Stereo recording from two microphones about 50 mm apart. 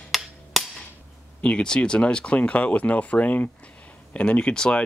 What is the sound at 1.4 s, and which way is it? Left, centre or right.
Speech, centre.